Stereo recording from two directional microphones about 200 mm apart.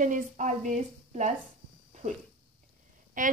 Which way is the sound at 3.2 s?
40° right (ahead or behind).